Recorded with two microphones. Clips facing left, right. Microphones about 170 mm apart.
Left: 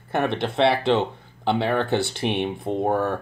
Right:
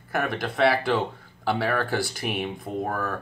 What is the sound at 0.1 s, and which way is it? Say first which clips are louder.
Speech: left 4 dB; 25° left (ahead or behind).